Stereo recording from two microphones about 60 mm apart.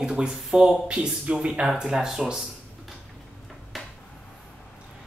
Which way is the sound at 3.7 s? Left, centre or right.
Centre.